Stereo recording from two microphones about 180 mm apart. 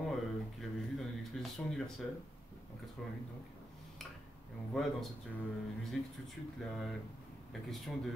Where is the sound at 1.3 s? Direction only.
Centre (ahead or behind).